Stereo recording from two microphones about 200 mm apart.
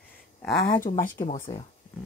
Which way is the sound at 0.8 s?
45° left (ahead or behind).